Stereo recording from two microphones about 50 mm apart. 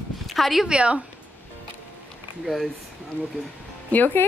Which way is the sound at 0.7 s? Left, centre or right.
Right.